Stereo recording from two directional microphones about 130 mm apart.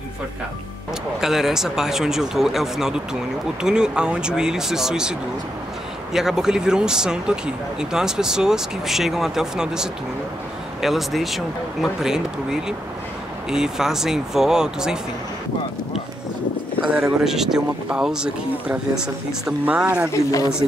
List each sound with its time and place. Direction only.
1.2 s speech: 5° right (ahead or behind)
6.1 s speech: 5° right (ahead or behind)
16.8 s speech: 5° right (ahead or behind)
20.1 s speech: 25° left (ahead or behind)